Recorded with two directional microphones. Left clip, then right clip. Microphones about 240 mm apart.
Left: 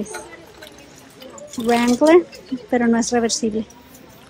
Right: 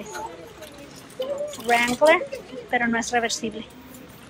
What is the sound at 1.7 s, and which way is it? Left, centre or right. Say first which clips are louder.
Speech: left 3 dB; centre.